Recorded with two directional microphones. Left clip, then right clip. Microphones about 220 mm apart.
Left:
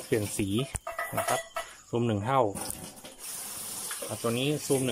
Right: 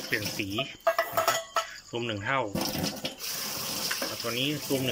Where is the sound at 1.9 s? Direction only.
20° left (ahead or behind).